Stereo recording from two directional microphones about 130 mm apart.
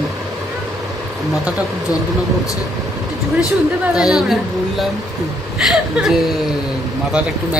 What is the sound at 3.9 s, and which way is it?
A woman's voice, 5° right (ahead or behind).